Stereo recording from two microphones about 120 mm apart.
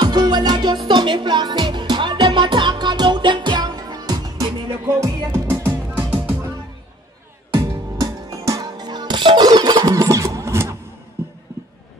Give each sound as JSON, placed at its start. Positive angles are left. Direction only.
{"t": 0.0, "sound": "music", "side_deg": -35}
{"t": 8.0, "sound": "music", "side_deg": -30}